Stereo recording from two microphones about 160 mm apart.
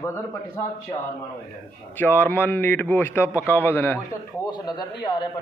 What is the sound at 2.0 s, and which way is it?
A man's voice, 10° left (ahead or behind).